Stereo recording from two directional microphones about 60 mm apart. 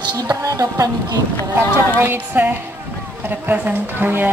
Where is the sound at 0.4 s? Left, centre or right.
Right.